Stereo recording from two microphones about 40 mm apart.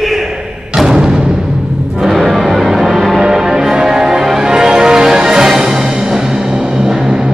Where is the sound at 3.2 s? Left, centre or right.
Centre.